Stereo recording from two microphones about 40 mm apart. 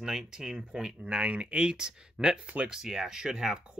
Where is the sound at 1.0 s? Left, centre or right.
Right.